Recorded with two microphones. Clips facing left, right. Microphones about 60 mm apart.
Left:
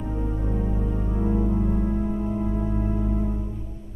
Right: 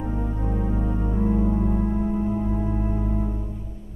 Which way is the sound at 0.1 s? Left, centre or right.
Centre.